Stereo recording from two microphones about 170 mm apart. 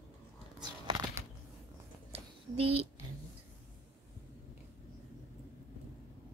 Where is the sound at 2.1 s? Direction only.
35° right (ahead or behind).